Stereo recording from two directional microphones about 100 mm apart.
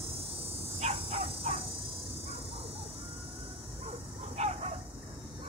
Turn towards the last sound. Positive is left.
turn(degrees=-90)